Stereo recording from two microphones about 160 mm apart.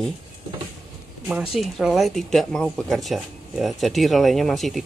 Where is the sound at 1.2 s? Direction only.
Centre (ahead or behind).